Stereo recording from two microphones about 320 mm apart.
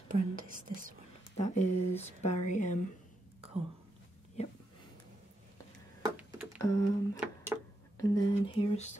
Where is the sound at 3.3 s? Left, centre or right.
Centre.